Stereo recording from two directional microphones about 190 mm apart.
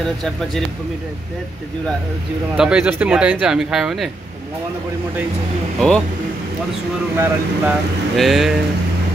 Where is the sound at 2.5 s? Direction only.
5° right (ahead or behind).